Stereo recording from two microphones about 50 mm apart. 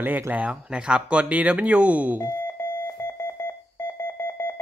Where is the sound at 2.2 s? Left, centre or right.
Left.